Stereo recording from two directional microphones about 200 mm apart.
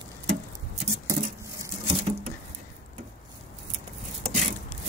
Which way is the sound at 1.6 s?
25° right (ahead or behind).